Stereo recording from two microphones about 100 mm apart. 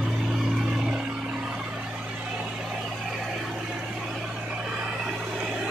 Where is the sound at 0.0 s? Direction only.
5° right (ahead or behind).